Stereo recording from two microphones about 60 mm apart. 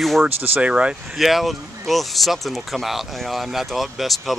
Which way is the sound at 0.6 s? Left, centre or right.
Centre.